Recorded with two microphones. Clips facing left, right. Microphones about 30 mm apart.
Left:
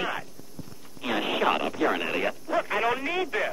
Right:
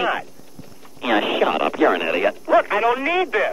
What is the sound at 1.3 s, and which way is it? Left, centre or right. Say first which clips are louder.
Speech: right 6 dB; centre.